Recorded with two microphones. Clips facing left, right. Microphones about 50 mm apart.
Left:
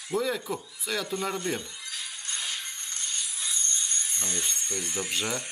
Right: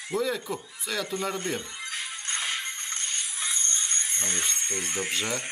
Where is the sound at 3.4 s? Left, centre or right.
Right.